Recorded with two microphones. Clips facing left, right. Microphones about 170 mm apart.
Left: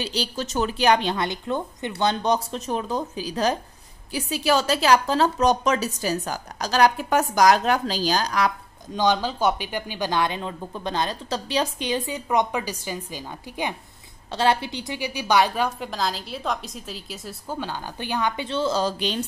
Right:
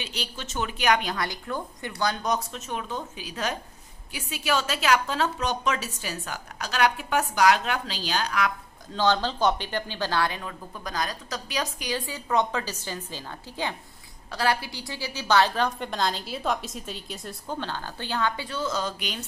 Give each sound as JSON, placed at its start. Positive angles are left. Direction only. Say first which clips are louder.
{"t": 0.0, "sound": "a woman's voice", "louder": "left 8 dB", "side_deg": 35}
{"t": 8.9, "sound": "a woman's voice", "louder": "left 2 dB", "side_deg": 15}
{"t": 14.3, "sound": "a woman's voice", "louder": "left 4 dB", "side_deg": 25}